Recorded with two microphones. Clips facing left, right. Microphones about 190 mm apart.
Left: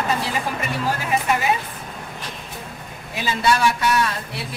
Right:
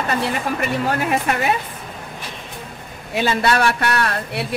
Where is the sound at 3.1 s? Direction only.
65° right (ahead or behind).